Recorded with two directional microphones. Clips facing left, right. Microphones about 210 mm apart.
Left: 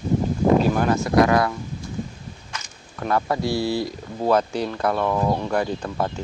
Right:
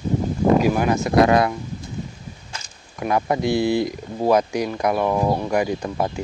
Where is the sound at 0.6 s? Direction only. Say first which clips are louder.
Right 1 dB; 10° right (ahead or behind).